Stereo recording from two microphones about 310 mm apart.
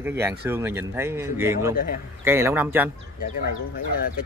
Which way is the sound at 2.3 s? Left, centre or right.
Centre.